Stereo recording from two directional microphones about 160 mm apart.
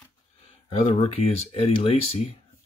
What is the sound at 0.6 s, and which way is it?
Speech, 45° left (ahead or behind).